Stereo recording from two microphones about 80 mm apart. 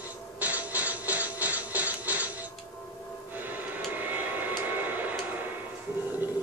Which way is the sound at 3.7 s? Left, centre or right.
Right.